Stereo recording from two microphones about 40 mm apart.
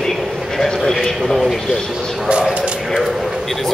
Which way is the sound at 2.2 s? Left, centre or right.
Right.